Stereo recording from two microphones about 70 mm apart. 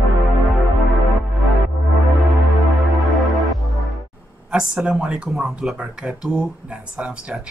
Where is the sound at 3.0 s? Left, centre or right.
Centre.